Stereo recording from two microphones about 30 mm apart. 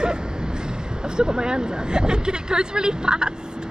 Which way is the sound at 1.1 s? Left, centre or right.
Right.